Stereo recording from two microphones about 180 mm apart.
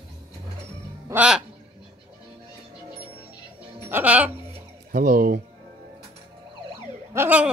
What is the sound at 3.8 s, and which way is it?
Speech, 10° right (ahead or behind).